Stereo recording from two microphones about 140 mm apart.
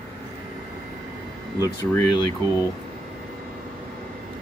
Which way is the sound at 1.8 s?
25° left (ahead or behind).